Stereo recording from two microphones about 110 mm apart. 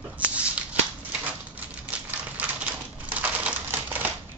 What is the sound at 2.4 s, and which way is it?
Typewriter, 15° right (ahead or behind).